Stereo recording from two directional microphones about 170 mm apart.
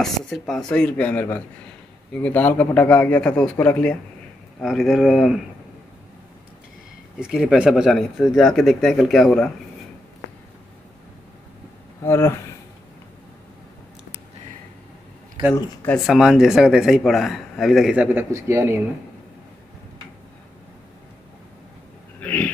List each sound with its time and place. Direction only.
0.0 s a man's voice: centre (ahead or behind)
7.2 s a man's voice: 5° right (ahead or behind)
12.0 s speech: 15° left (ahead or behind)
15.5 s speech: 20° left (ahead or behind)
15.9 s a man's voice: centre (ahead or behind)
22.2 s a sound: 10° left (ahead or behind)